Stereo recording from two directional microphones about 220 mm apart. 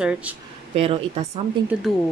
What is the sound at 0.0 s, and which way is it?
Speech, 5° right (ahead or behind).